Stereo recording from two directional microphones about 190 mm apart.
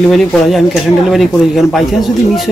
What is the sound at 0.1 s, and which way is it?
Speech, centre (ahead or behind).